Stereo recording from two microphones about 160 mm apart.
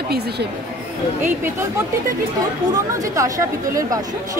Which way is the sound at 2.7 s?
20° right (ahead or behind).